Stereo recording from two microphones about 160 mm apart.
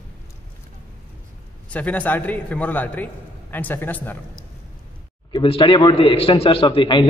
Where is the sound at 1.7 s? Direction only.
10° left (ahead or behind).